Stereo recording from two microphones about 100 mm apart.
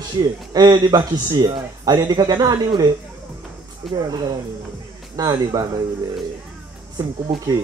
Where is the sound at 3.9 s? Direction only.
40° right (ahead or behind).